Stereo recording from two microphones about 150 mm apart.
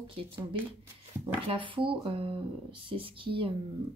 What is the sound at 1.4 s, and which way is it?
Speech, 35° right (ahead or behind).